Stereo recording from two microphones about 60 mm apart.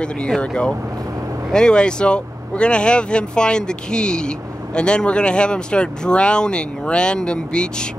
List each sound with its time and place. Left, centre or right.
0.4 s speech: centre